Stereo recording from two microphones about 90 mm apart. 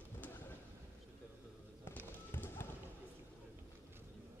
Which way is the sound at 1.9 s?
25° left (ahead or behind).